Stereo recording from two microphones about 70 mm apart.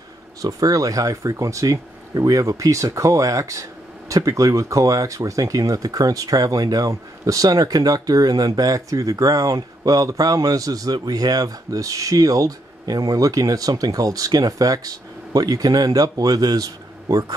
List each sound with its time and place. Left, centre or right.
0.4 s speech: right